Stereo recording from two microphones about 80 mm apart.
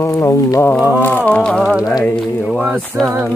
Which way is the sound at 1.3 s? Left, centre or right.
Centre.